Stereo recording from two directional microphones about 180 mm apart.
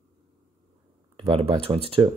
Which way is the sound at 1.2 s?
30° right (ahead or behind).